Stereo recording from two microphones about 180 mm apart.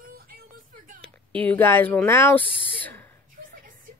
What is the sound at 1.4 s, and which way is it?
Speech, 10° left (ahead or behind).